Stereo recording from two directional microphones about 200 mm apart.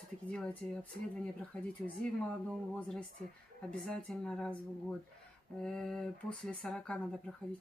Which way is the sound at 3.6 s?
5° left (ahead or behind).